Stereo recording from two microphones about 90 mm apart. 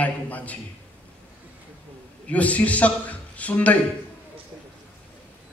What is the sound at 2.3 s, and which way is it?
A man's voice, 15° left (ahead or behind).